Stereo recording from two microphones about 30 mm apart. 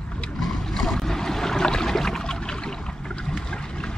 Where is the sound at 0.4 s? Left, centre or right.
Centre.